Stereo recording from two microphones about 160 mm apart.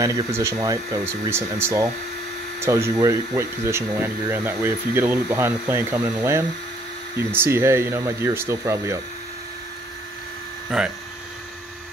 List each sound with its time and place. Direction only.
0.0 s speech: 20° right (ahead or behind)
10.7 s speech: 5° right (ahead or behind)